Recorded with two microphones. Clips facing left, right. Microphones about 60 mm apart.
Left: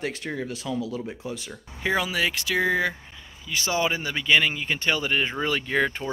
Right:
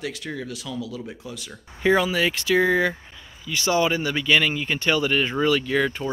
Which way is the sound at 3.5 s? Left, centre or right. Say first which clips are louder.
Right 4 dB; centre.